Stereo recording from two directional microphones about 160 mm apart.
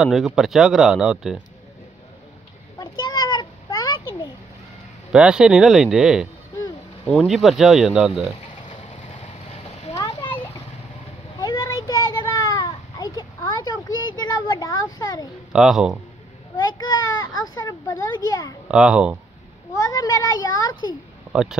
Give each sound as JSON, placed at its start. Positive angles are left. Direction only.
{"t": 0.0, "sound": "speech", "side_deg": 0}
{"t": 2.8, "sound": "a sound", "side_deg": 30}
{"t": 5.1, "sound": "speech", "side_deg": -5}
{"t": 9.9, "sound": "a sound", "side_deg": 20}
{"t": 15.5, "sound": "speech", "side_deg": -5}
{"t": 16.7, "sound": "baby cry", "side_deg": 25}
{"t": 17.6, "sound": "speech", "side_deg": 20}
{"t": 18.7, "sound": "speech", "side_deg": -5}
{"t": 19.7, "sound": "a sound", "side_deg": 20}
{"t": 21.3, "sound": "speech", "side_deg": -5}